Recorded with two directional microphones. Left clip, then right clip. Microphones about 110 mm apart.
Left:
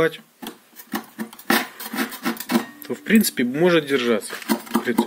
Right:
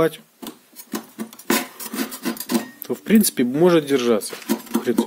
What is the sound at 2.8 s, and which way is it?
Speech, 35° right (ahead or behind).